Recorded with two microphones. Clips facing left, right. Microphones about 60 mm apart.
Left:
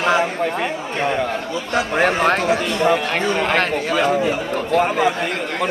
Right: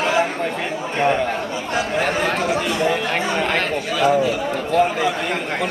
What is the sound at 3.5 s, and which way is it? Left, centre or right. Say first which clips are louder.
Speech: left 3 dB; left.